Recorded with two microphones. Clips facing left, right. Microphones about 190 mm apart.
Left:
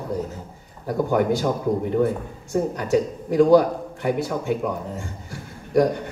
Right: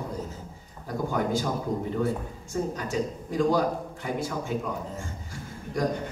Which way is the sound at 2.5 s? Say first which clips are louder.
Left 8 dB; 65° left (ahead or behind).